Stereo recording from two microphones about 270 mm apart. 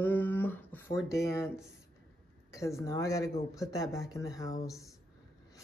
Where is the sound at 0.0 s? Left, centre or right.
Centre.